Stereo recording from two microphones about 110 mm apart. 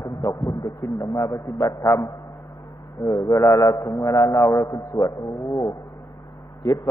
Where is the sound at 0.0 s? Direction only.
30° left (ahead or behind).